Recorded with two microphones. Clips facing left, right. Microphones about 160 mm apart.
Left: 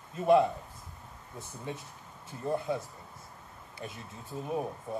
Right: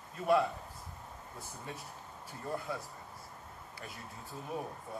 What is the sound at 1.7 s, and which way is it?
Speech, 20° left (ahead or behind).